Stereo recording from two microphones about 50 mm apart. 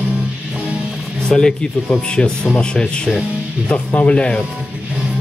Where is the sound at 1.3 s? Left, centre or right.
Centre.